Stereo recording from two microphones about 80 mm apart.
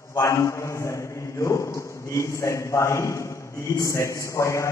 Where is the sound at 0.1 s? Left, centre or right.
Left.